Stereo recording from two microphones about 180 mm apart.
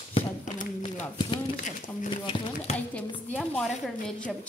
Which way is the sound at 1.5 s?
45° left (ahead or behind).